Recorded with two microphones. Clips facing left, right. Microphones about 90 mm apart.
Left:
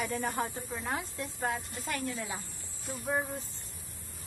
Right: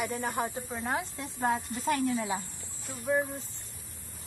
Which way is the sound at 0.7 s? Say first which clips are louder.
Right 2 dB; 20° right (ahead or behind).